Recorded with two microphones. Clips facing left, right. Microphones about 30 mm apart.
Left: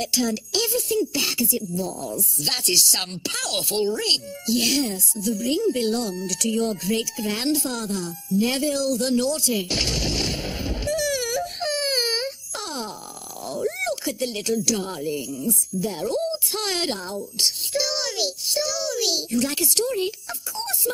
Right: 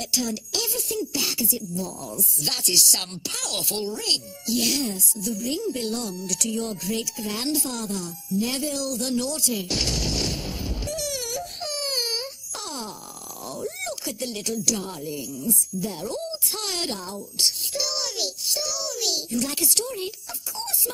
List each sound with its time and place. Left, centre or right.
0.0 s speech: left
0.7 s speech: centre
0.9 s speech: left
11.1 s whimper: left
11.6 s baby cry: left
13.5 s a sound: left
14.0 s speech: left